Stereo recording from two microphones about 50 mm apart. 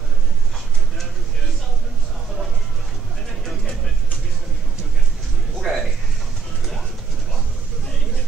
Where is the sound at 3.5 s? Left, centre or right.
Centre.